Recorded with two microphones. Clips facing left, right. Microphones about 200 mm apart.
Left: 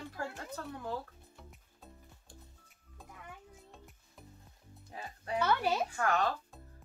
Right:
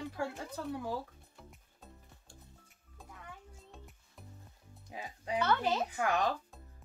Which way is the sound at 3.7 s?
Centre (ahead or behind).